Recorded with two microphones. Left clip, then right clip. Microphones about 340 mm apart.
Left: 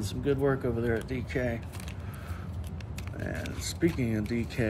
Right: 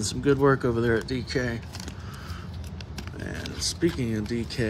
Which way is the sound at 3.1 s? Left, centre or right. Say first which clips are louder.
Right 2 dB; centre.